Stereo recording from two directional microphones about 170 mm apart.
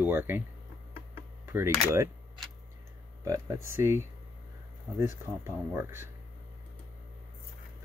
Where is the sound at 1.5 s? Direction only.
15° right (ahead or behind).